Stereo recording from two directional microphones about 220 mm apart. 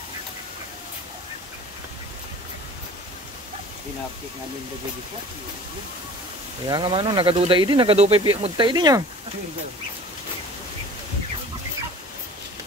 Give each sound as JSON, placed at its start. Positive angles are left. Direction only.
{"t": 6.7, "sound": "speech", "side_deg": -25}